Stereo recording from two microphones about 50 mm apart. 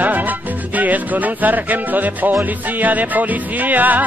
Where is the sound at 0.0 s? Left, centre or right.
Right.